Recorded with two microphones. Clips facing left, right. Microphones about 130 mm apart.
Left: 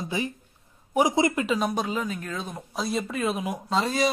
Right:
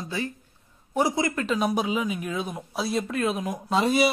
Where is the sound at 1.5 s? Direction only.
Centre (ahead or behind).